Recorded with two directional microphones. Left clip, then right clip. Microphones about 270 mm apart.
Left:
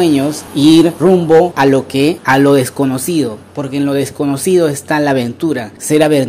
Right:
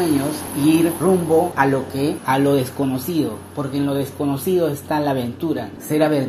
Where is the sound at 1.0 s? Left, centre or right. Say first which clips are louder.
Left 8 dB; left.